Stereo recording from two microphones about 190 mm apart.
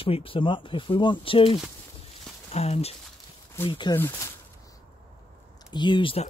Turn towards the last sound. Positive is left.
turn(degrees=30)  # may be behind; listen again after turning